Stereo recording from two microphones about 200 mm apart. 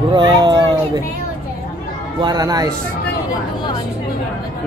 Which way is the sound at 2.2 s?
20° right (ahead or behind).